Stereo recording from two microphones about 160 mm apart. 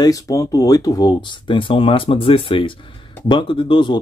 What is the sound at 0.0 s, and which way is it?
Speech, 20° left (ahead or behind).